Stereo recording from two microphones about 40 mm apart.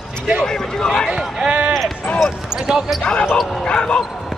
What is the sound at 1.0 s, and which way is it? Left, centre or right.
Speech, centre.